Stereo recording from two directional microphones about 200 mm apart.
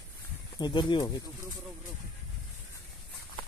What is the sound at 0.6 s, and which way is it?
Speech, 20° left (ahead or behind).